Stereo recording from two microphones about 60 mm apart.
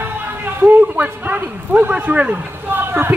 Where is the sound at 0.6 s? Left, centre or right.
Right.